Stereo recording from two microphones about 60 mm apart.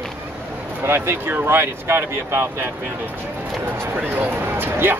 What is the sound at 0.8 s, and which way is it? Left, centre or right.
Speech, right.